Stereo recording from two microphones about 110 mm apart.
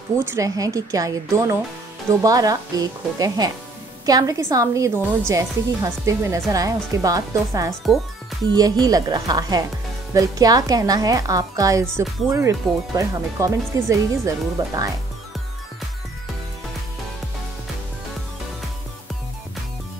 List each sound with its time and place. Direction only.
0.2 s a woman's voice: 25° right (ahead or behind)